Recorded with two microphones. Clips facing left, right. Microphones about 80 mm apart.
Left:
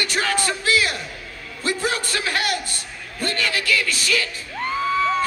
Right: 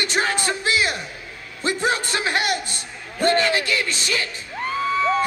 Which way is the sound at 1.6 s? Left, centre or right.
Right.